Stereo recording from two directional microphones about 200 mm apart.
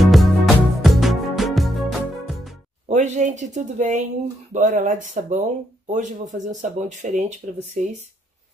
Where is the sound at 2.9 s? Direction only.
35° right (ahead or behind).